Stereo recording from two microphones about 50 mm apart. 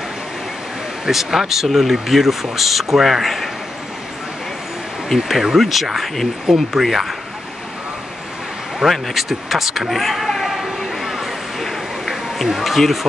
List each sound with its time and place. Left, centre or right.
1.0 s speech: centre
5.0 s speech: centre
8.7 s vehicle: centre
11.6 s a sound: centre